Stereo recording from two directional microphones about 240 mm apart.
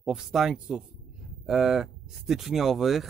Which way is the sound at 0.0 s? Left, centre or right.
Centre.